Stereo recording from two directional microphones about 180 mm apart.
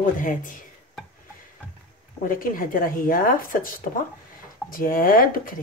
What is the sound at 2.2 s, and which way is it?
Speech, 50° left (ahead or behind).